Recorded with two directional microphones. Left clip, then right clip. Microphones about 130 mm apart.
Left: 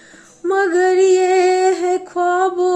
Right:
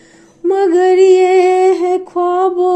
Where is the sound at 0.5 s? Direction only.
50° right (ahead or behind).